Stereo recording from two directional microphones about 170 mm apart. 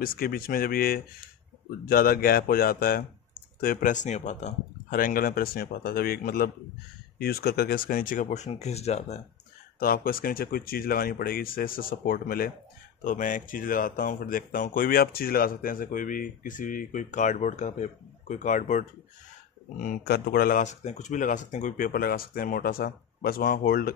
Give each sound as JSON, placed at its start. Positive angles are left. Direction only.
{"t": 0.0, "sound": "speech", "side_deg": 60}
{"t": 3.6, "sound": "speech", "side_deg": 50}
{"t": 9.8, "sound": "speech", "side_deg": 60}
{"t": 19.8, "sound": "speech", "side_deg": 60}